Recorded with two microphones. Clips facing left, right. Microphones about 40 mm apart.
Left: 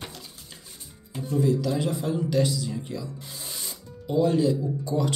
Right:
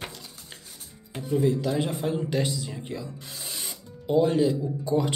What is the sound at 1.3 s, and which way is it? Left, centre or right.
Speech, right.